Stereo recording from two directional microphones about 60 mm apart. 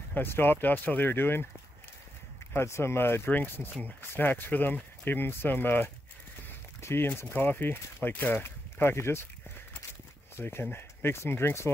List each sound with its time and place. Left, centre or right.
0.1 s speech: left
2.5 s speech: left
10.3 s speech: left